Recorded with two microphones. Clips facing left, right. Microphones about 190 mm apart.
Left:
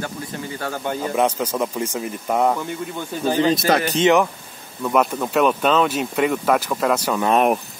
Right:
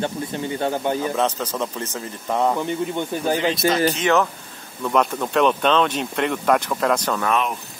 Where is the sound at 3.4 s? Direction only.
40° left (ahead or behind).